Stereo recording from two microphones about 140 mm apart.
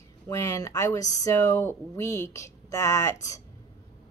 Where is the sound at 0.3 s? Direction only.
20° left (ahead or behind).